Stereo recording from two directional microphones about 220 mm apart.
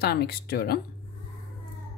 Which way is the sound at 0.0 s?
45° left (ahead or behind).